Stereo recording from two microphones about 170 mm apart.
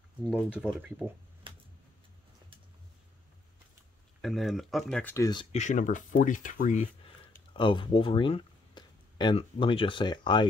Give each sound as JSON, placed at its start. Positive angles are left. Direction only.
{"t": 0.3, "sound": "speech", "side_deg": -5}
{"t": 1.5, "sound": "a sound", "side_deg": -30}
{"t": 4.2, "sound": "speech", "side_deg": 0}
{"t": 5.1, "sound": "speech", "side_deg": 25}
{"t": 5.5, "sound": "speech", "side_deg": 45}
{"t": 7.5, "sound": "speech", "side_deg": 30}